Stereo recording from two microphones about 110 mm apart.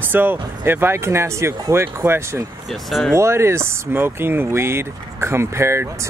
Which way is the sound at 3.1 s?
25° right (ahead or behind).